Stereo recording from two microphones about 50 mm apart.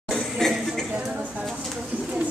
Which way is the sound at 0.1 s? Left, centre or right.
Centre.